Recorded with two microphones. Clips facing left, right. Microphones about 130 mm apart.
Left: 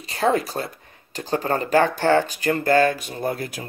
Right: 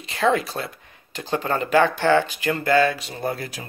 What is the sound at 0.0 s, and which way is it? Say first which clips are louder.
Speech: even; 35° left (ahead or behind).